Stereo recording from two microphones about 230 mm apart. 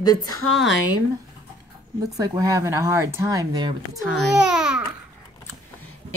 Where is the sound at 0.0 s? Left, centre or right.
Centre.